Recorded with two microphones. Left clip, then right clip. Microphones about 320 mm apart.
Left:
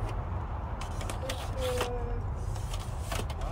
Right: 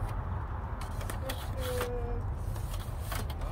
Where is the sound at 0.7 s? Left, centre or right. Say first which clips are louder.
Left 2 dB; left.